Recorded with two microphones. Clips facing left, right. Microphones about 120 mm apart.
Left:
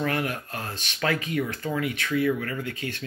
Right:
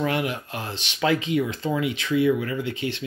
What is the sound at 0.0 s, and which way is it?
Speech, 20° right (ahead or behind).